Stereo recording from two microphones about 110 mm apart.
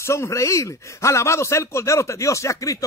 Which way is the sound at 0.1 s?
25° left (ahead or behind).